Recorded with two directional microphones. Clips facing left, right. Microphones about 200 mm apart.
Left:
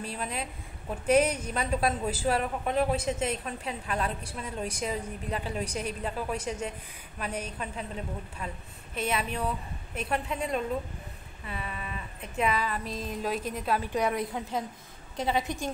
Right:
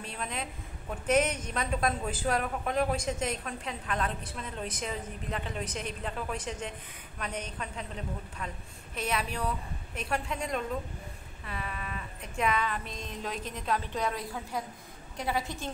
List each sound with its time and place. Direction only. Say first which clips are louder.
0.0 s a woman's voice: left 3 dB; 5° left (ahead or behind)
1.0 s a woman's voice: left 3 dB; 30° left (ahead or behind)
1.3 s a woman's voice: left 3 dB; 5° left (ahead or behind)